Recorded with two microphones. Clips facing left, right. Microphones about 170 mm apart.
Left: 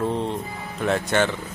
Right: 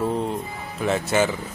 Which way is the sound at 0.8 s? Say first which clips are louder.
Even; 5° right (ahead or behind).